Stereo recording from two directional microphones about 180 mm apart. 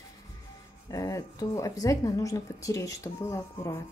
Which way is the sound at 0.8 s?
20° left (ahead or behind).